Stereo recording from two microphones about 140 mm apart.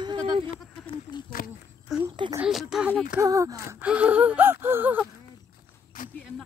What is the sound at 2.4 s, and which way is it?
Speech, 5° right (ahead or behind).